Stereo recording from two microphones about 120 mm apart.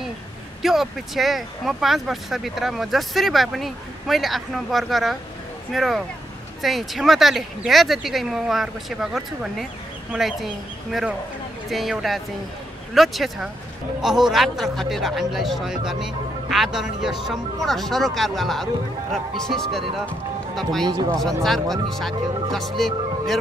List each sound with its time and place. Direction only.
0.6 s speech: centre (ahead or behind)
20.8 s speech: 35° right (ahead or behind)
21.2 s speech: centre (ahead or behind)